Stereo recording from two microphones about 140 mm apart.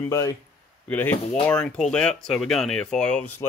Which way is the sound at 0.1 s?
25° left (ahead or behind).